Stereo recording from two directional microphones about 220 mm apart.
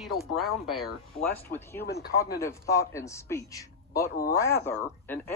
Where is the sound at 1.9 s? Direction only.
45° left (ahead or behind).